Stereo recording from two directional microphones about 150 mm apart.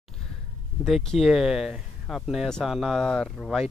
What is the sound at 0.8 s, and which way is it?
Speech, centre (ahead or behind).